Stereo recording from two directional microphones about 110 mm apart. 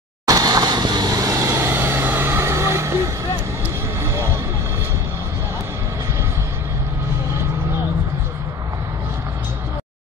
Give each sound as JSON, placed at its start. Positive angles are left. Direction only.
{"t": 0.3, "sound": "vehicle", "side_deg": -35}
{"t": 1.5, "sound": "vehicle", "side_deg": -20}
{"t": 4.0, "sound": "a sound", "side_deg": -25}